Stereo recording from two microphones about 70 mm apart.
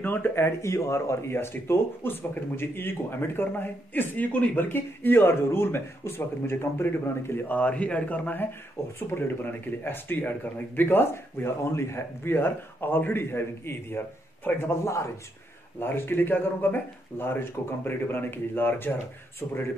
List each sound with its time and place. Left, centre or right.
0.0 s speech: left
8.8 s speech: left
19.4 s speech: left